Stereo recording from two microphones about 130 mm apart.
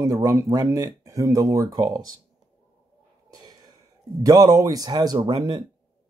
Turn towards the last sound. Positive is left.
turn(degrees=-35)  # may be behind; listen again after turning